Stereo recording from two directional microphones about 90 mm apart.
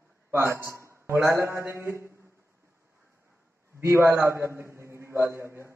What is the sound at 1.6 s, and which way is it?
Mantra, 30° right (ahead or behind).